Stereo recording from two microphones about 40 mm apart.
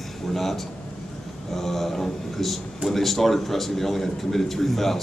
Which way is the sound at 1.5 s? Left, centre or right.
Centre.